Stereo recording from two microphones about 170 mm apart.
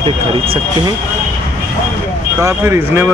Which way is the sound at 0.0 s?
35° right (ahead or behind).